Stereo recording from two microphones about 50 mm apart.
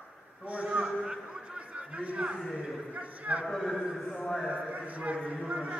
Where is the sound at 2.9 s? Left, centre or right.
Right.